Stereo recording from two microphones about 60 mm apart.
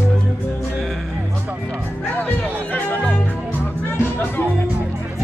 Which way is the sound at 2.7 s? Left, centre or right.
Left.